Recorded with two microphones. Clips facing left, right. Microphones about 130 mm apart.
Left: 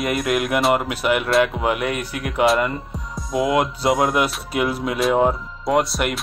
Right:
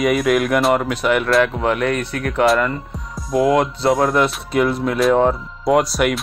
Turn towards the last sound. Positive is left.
turn(degrees=0)  # may be behind; listen again after turning